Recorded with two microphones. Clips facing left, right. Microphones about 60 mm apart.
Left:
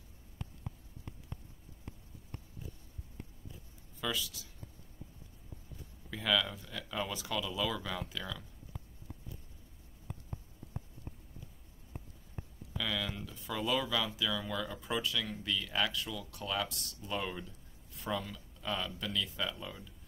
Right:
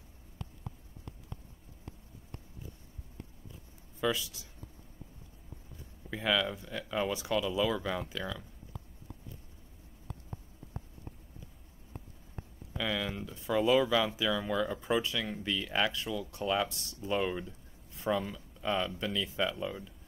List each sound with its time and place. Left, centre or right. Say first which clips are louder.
4.0 s speech: right 5 dB; centre
6.0 s speech: right 2 dB; centre
12.7 s speech: right 3 dB; centre